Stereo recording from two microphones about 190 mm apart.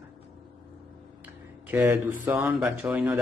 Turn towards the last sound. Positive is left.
turn(degrees=-5)  # may be behind; listen again after turning